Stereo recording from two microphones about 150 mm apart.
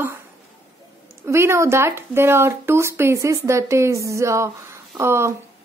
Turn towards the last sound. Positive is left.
turn(degrees=-15)  # may be behind; listen again after turning